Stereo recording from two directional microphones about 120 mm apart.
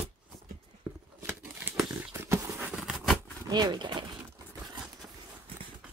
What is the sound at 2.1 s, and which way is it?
Horse, 20° right (ahead or behind).